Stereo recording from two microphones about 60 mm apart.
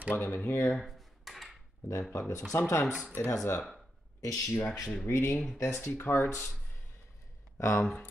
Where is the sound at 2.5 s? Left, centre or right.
Left.